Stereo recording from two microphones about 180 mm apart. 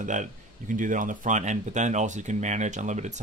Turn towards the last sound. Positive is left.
turn(degrees=-40)  # may be behind; listen again after turning